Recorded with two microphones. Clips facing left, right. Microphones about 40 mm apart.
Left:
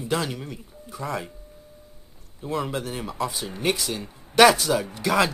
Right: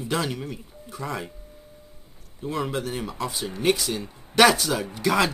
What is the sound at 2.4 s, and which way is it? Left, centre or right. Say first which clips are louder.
Speech: even; centre.